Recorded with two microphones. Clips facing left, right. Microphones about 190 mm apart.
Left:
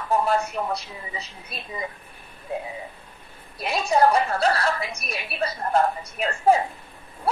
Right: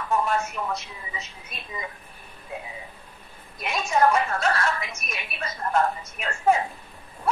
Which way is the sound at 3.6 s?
35° left (ahead or behind).